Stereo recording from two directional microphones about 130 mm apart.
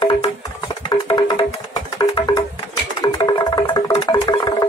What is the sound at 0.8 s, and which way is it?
Music, 35° left (ahead or behind).